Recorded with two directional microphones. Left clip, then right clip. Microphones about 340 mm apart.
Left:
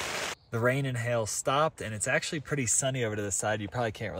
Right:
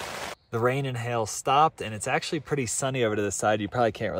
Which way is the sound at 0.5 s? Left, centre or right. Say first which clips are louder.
Right 3 dB; centre.